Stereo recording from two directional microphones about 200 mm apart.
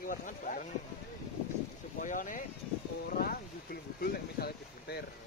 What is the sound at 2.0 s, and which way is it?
Speech, 40° left (ahead or behind).